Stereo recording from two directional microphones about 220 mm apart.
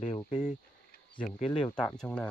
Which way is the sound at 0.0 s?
25° left (ahead or behind).